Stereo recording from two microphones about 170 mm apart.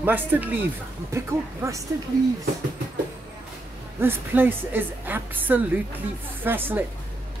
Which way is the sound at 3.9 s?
10° right (ahead or behind).